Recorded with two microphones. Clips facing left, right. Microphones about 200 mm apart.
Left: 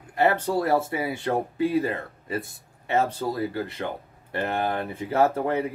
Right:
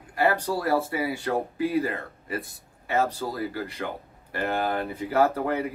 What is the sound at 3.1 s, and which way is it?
Speech, 25° left (ahead or behind).